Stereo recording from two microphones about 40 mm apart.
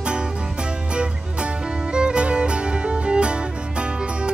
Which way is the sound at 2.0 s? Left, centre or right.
Right.